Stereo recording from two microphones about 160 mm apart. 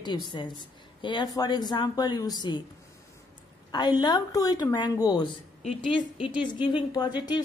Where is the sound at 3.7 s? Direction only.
25° left (ahead or behind).